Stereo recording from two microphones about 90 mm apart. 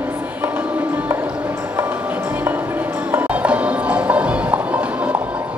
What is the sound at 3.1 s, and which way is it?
Music, 15° right (ahead or behind).